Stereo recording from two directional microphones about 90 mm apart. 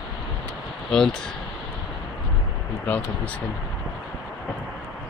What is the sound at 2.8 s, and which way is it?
Speech, 20° left (ahead or behind).